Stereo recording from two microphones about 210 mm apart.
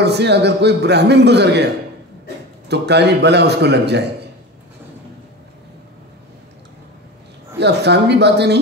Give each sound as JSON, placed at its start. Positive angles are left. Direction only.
{"t": 0.0, "sound": "a man's voice", "side_deg": -55}
{"t": 7.5, "sound": "a man's voice", "side_deg": -55}